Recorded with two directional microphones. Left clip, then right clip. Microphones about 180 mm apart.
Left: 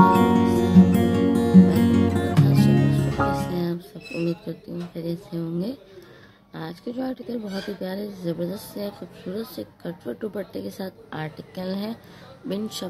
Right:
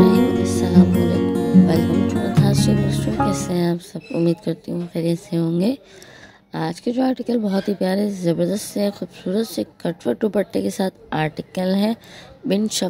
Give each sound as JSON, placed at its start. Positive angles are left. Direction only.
{"t": 0.1, "sound": "music", "side_deg": 0}
{"t": 3.3, "sound": "music", "side_deg": -45}
{"t": 4.3, "sound": "a woman's voice", "side_deg": -45}